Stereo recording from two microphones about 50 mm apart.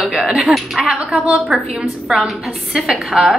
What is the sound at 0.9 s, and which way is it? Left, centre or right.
Speech, right.